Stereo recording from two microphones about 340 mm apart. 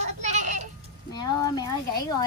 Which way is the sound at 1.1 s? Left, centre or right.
Centre.